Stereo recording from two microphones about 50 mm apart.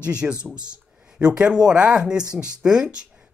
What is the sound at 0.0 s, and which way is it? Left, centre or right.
Speech, centre.